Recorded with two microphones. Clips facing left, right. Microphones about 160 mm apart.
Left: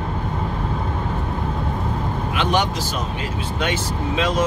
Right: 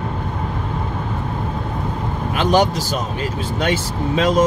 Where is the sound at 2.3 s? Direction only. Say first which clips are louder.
Right 6 dB; 40° right (ahead or behind).